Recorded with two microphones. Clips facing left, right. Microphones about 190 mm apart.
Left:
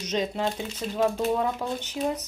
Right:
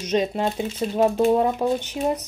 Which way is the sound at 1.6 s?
60° right (ahead or behind).